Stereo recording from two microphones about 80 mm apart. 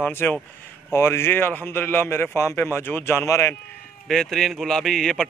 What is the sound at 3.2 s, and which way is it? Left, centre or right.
Speech, left.